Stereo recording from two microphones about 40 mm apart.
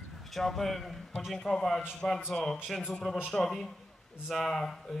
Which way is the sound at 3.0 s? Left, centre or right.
Centre.